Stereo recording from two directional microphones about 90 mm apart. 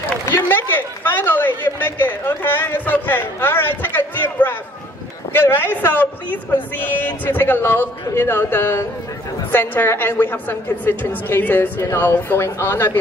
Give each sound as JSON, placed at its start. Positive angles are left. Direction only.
{"t": 0.2, "sound": "a woman's voice", "side_deg": 25}
{"t": 7.1, "sound": "a woman's voice", "side_deg": 20}